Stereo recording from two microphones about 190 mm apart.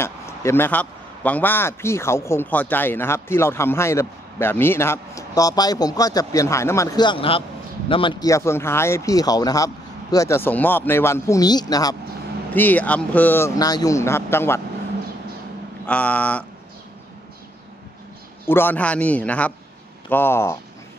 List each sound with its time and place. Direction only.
0.0 s a man's voice: 15° left (ahead or behind)
12.5 s a man's voice: 10° left (ahead or behind)
15.9 s a man's voice: 5° left (ahead or behind)
18.5 s a man's voice: 10° left (ahead or behind)